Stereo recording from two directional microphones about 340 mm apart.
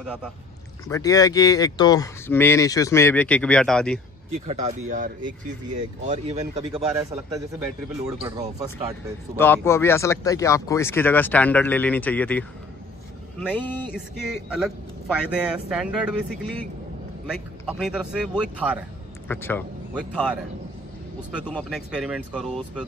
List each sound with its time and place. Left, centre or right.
0.0 s speech: centre
0.8 s speech: centre
4.5 s speech: right
9.4 s speech: centre
17.3 s speech: centre
19.2 s speech: centre
21.5 s speech: centre